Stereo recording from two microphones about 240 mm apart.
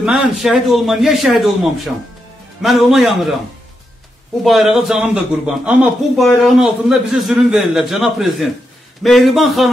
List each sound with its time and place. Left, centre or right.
0.0 s a man's voice: centre
4.4 s a man's voice: centre